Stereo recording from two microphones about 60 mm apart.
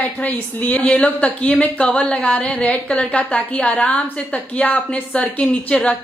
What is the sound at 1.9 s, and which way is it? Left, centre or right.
A woman's voice, centre.